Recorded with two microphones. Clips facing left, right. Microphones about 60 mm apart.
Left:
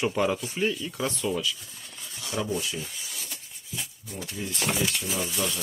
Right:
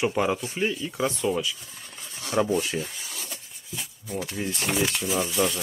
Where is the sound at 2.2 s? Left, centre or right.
Right.